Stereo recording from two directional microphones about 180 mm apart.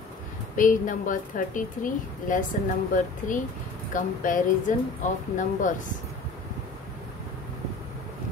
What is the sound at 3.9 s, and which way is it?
Speech, 45° left (ahead or behind).